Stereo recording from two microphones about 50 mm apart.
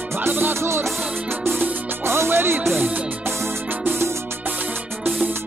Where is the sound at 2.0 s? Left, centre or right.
Right.